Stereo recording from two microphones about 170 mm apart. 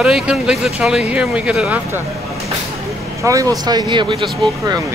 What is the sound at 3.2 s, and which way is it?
Speech, 20° right (ahead or behind).